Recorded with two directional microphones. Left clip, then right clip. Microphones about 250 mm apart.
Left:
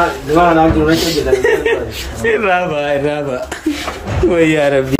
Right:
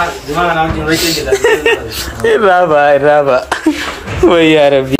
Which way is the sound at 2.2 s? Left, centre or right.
Right.